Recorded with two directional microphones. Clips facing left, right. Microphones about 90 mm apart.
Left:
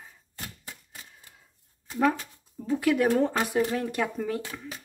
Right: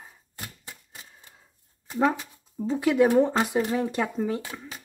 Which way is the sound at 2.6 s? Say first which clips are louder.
Right 3 dB; 20° right (ahead or behind).